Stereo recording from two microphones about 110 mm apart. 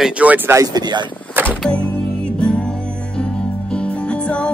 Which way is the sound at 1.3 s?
15° right (ahead or behind).